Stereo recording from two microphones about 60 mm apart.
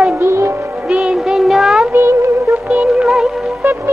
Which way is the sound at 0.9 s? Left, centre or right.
Centre.